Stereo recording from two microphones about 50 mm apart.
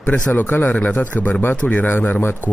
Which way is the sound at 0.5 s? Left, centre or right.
Left.